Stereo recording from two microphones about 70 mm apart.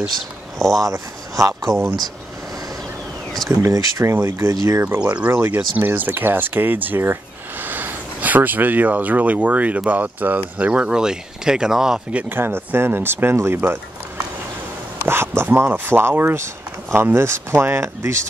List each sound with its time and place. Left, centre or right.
0.6 s speech: centre
0.8 s speech: right
3.5 s speech: right
5.0 s speech: right
12.1 s speech: right
12.4 s speech: right
15.0 s speech: right